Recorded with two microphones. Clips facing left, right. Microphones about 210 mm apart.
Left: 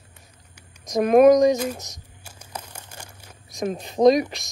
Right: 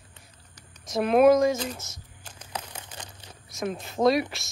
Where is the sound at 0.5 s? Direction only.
15° left (ahead or behind).